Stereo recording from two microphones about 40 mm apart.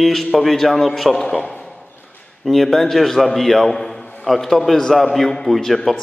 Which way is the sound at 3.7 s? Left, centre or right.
Centre.